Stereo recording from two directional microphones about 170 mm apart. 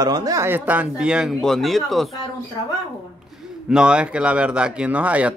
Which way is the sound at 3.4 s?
5° right (ahead or behind).